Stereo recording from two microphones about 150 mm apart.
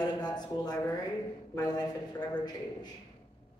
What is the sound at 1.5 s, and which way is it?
Speech, 25° left (ahead or behind).